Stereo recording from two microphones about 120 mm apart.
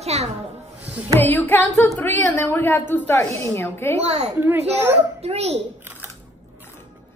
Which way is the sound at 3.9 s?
60° right (ahead or behind).